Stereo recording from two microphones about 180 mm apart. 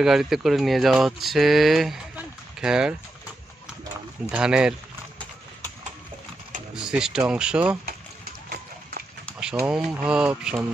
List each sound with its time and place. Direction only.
0.0 s speech: centre (ahead or behind)
4.3 s speech: 5° right (ahead or behind)
6.7 s speech: 5° right (ahead or behind)
9.4 s speech: 5° right (ahead or behind)